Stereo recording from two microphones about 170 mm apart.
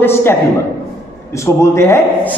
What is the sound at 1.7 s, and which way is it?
Speech, 15° left (ahead or behind).